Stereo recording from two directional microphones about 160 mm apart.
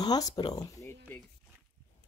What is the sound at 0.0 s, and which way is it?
Speech, 25° left (ahead or behind).